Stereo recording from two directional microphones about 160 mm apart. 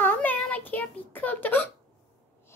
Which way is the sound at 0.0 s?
10° left (ahead or behind).